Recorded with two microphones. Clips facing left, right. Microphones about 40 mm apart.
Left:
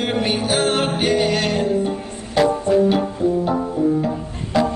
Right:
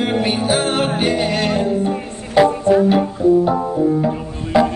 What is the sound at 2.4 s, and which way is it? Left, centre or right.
Music, centre.